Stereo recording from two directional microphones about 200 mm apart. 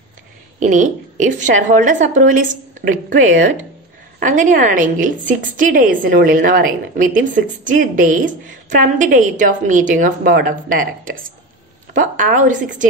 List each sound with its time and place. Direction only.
0.6 s a woman's voice: 40° right (ahead or behind)